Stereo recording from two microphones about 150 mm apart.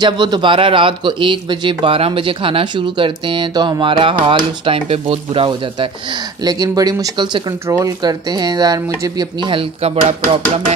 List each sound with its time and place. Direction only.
0.0 s speech: 30° right (ahead or behind)